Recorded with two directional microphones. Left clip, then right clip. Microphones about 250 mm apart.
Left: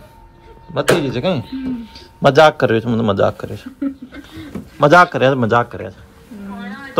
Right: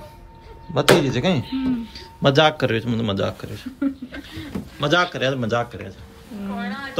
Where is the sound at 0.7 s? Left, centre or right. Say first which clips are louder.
Left 1 dB; centre.